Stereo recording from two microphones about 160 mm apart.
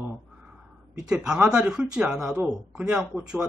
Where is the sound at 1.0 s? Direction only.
5° right (ahead or behind).